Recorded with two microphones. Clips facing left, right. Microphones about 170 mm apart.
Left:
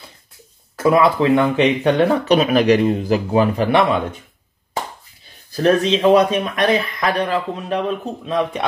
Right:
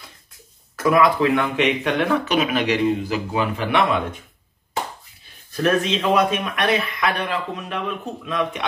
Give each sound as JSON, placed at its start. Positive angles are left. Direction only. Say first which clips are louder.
{"t": 0.7, "sound": "speech", "louder": "left 3 dB", "side_deg": 30}
{"t": 5.5, "sound": "speech", "louder": "left 4 dB", "side_deg": 35}